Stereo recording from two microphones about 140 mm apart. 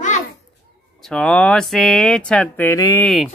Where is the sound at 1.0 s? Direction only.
5° left (ahead or behind).